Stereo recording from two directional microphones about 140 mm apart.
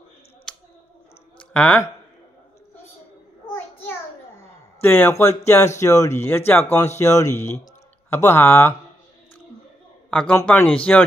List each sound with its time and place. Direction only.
0.5 s a sound: 5° left (ahead or behind)
1.4 s speech: 5° left (ahead or behind)
4.8 s speech: 15° left (ahead or behind)
10.4 s speech: 10° left (ahead or behind)